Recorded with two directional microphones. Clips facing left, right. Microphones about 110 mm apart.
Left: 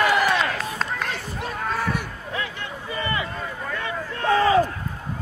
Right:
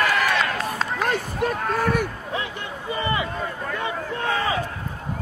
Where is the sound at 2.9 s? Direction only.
20° right (ahead or behind).